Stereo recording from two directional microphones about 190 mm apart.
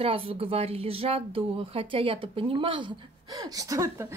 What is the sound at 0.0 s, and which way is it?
Speech, 30° right (ahead or behind).